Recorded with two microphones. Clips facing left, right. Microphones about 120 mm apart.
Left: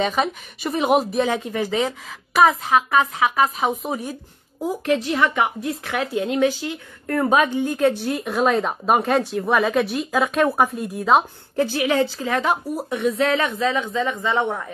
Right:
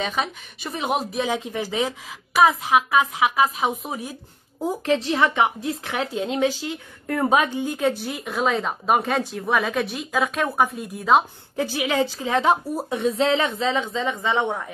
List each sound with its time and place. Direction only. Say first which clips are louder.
0.0 s speech: left 5 dB; centre (ahead or behind)
4.8 s a woman's voice: left 1 dB; 30° right (ahead or behind); by 11.2 s centre (ahead or behind)
11.7 s a woman's voice: left 1 dB; 15° right (ahead or behind)